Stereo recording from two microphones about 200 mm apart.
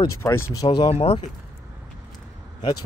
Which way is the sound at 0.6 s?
25° left (ahead or behind).